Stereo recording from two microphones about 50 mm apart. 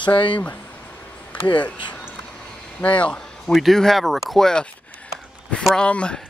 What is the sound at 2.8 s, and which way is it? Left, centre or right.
Speech, left.